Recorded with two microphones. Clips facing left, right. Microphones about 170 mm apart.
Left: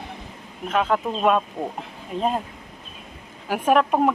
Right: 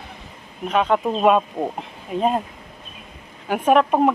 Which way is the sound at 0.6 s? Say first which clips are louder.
Right 3 dB; centre (ahead or behind).